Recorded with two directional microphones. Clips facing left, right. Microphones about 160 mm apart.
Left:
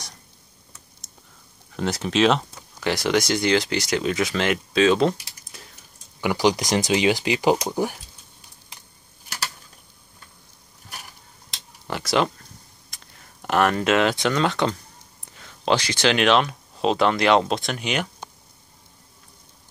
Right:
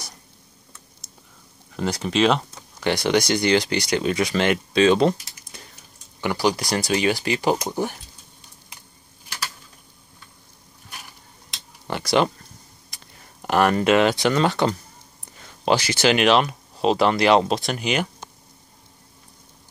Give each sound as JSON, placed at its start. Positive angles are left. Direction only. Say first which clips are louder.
{"t": 1.7, "sound": "speech", "louder": "even", "side_deg": 0}
{"t": 6.2, "sound": "speech", "louder": "left 1 dB", "side_deg": 15}
{"t": 11.9, "sound": "a sound", "louder": "right 2 dB", "side_deg": 0}
{"t": 12.9, "sound": "speech", "louder": "right 1 dB", "side_deg": 0}